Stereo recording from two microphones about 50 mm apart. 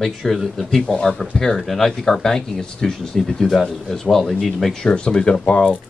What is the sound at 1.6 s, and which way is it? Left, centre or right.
Speech, centre.